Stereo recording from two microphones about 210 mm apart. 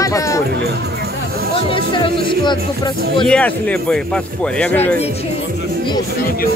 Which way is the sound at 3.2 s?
5° left (ahead or behind).